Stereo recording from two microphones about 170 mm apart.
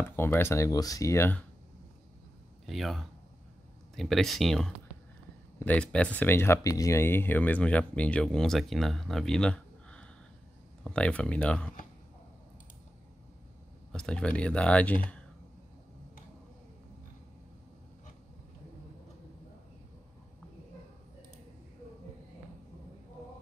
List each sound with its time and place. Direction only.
0.1 s speech: 15° left (ahead or behind)
2.6 s speech: centre (ahead or behind)
13.9 s speech: 5° left (ahead or behind)